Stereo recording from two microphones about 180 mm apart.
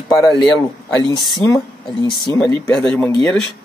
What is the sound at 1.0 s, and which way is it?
A woman's voice, 25° left (ahead or behind).